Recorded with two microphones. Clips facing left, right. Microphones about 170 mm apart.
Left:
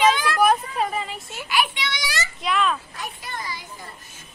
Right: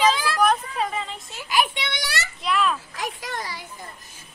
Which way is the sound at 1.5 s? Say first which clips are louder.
Right 1 dB; 55° right (ahead or behind).